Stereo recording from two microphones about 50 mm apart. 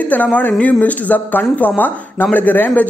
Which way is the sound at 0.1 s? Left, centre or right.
Left.